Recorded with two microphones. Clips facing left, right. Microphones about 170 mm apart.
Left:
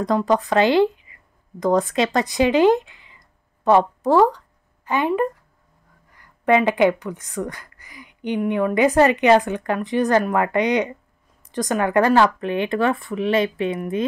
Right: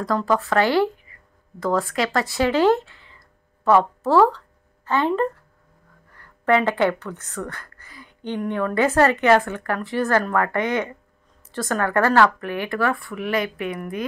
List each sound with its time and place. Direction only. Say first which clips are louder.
0.0 s a woman's voice: left 2 dB; 20° left (ahead or behind)